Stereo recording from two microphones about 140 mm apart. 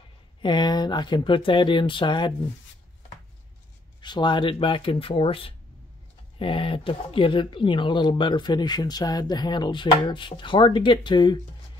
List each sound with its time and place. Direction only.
0.4 s speech: 30° left (ahead or behind)
4.0 s speech: 35° left (ahead or behind)